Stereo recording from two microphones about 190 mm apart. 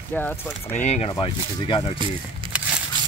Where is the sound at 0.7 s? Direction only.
35° left (ahead or behind).